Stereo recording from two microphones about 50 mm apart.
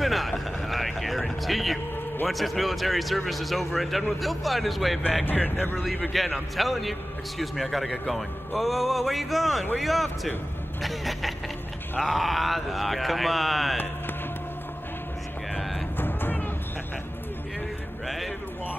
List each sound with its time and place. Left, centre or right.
0.0 s a sound: centre
2.2 s a man's voice: centre
5.2 s speech: left
6.1 s a man's voice: centre
16.0 s music: left
18.0 s a sound: centre